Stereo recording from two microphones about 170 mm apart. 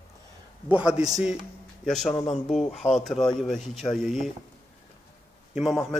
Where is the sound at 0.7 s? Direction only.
5° right (ahead or behind).